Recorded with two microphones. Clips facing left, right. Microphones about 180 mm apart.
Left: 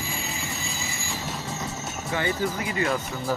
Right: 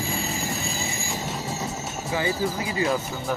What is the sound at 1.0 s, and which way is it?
Train, 15° right (ahead or behind).